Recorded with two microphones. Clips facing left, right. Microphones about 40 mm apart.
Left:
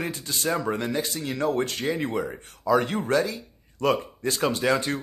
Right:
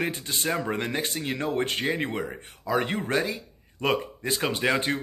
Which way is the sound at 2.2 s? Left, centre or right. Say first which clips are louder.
Left 6 dB; right.